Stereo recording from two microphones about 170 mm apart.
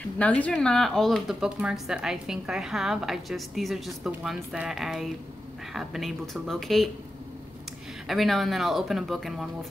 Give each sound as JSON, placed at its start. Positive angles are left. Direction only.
{"t": 0.2, "sound": "speech", "side_deg": 10}
{"t": 8.1, "sound": "speech", "side_deg": 0}